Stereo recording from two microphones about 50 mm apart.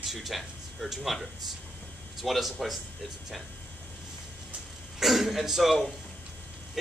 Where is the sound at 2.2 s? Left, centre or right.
Centre.